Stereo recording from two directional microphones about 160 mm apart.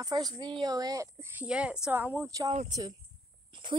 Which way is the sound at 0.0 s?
25° right (ahead or behind).